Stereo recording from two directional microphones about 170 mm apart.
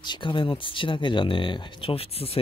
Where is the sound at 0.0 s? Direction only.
25° left (ahead or behind).